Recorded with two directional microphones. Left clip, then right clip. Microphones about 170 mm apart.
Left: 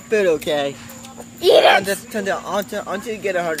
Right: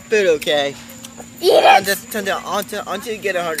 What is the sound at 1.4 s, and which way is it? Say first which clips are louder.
Speech: right 1 dB; 10° right (ahead or behind).